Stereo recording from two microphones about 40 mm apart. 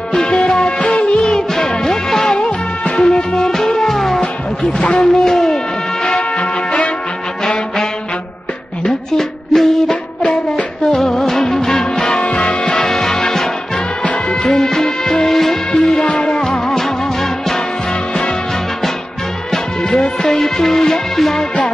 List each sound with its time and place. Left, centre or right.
0.1 s music: left
2.3 s music: left; by 4.2 s centre
4.9 s speech: centre
6.0 s music: left
8.8 s music: centre
12.0 s music: left
14.0 s music: left
16.0 s music: left; by 17.6 s centre
19.8 s music: centre